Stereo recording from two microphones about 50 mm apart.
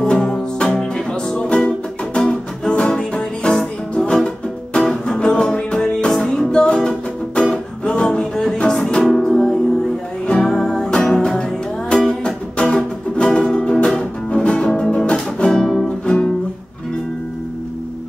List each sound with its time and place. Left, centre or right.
0.0 s music: centre
8.1 s music: centre